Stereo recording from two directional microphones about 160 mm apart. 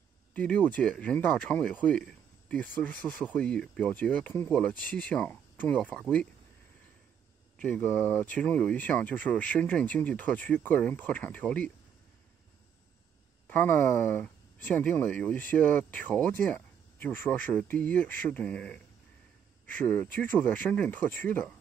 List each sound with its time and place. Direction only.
0.3 s speech: 5° left (ahead or behind)
7.5 s speech: 5° left (ahead or behind)
13.5 s speech: 10° left (ahead or behind)